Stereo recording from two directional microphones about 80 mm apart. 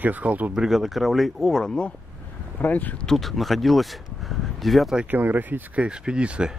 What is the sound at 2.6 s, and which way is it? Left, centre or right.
Speech, left.